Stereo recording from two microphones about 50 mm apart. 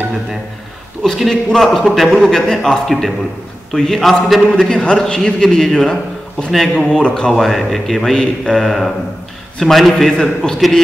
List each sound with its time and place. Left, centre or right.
1.0 s a man's voice: centre
6.9 s a man's voice: centre
7.3 s a man's voice: centre